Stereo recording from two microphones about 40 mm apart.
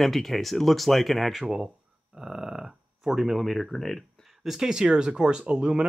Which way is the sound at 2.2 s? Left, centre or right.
Centre.